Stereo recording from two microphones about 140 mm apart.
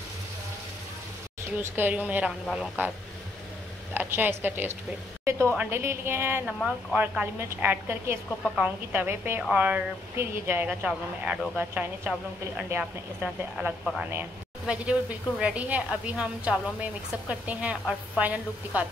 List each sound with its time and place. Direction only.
1.6 s a woman's voice: 15° right (ahead or behind)
2.4 s speech: 5° left (ahead or behind)
3.9 s a woman's voice: 15° right (ahead or behind)
6.4 s speech: centre (ahead or behind)
7.0 s a woman's voice: 15° right (ahead or behind)